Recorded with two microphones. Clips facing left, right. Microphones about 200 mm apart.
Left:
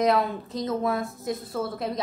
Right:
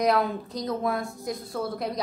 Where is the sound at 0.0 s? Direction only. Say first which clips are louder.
Left 1 dB; centre (ahead or behind).